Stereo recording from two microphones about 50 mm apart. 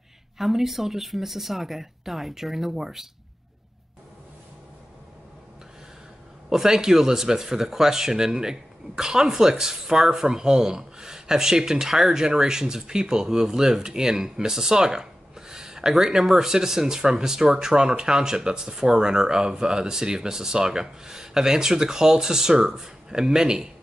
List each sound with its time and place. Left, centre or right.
0.4 s speech: centre
6.5 s speech: centre